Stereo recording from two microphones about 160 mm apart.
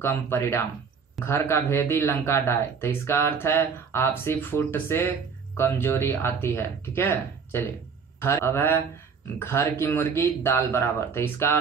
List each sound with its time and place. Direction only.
0.0 s speech: 15° left (ahead or behind)